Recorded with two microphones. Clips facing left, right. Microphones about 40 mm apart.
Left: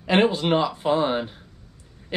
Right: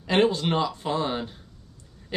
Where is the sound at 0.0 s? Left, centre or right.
Centre.